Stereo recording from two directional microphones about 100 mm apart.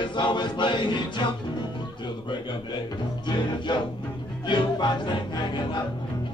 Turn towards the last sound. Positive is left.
turn(degrees=50)  # may be behind; listen again after turning